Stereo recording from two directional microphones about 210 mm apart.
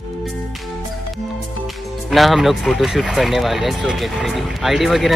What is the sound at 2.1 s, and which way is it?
Speech, centre (ahead or behind).